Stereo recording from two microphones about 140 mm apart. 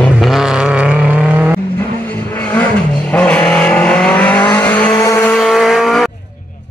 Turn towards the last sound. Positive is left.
turn(degrees=0)  # may be behind; listen again after turning